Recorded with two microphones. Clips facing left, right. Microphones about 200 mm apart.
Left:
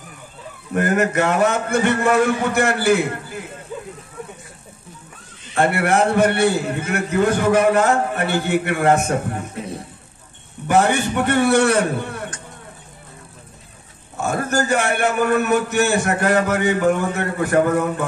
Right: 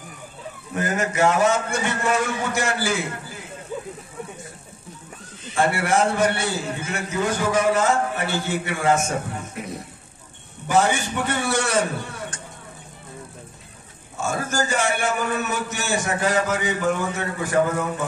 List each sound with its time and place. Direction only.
0.7 s a man's voice: 60° left (ahead or behind)
5.5 s a man's voice: 60° left (ahead or behind)
9.6 s a sound: 30° left (ahead or behind)
10.7 s a man's voice: 60° left (ahead or behind)
14.2 s a man's voice: 60° left (ahead or behind)